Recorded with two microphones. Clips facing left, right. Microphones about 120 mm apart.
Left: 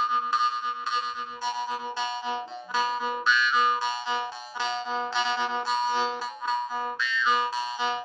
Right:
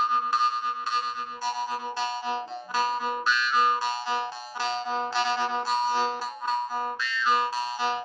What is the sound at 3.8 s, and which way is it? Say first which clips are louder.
Music: right 1 dB; 40° right (ahead or behind).